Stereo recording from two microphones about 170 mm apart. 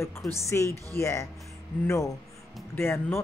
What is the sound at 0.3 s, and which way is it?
Speech, 15° left (ahead or behind).